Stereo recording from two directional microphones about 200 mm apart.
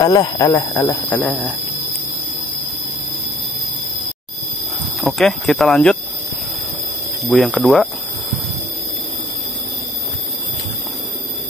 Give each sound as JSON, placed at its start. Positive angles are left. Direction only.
{"t": 0.0, "sound": "speech", "side_deg": 20}
{"t": 5.0, "sound": "speech", "side_deg": 0}
{"t": 7.2, "sound": "speech", "side_deg": 5}